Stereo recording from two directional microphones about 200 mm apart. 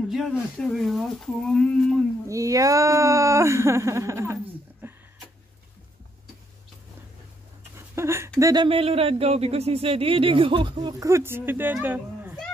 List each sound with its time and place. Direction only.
0.1 s speech: centre (ahead or behind)
2.2 s speech: 15° right (ahead or behind)
7.7 s a sound: 15° right (ahead or behind)
8.4 s speech: 15° right (ahead or behind)
8.6 s speech: 30° right (ahead or behind); by 12.4 s 10° right (ahead or behind)